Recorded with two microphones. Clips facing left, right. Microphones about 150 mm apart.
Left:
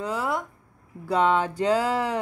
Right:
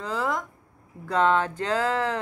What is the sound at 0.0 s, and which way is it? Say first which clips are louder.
Speech: left 1 dB; 10° left (ahead or behind).